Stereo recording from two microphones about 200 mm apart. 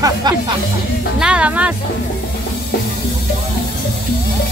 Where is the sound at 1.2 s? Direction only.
5° right (ahead or behind).